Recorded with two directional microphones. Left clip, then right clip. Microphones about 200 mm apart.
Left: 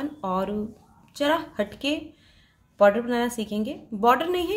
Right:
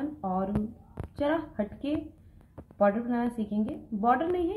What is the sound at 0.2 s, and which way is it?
A woman's voice, 25° left (ahead or behind).